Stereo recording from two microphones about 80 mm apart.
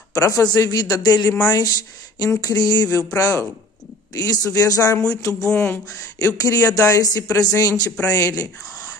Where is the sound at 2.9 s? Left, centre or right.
Left.